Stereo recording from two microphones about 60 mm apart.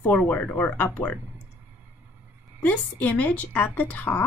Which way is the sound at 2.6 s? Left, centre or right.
Left.